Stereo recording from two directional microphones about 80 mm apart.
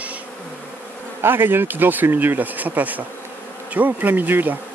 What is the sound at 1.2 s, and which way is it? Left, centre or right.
Speech, right.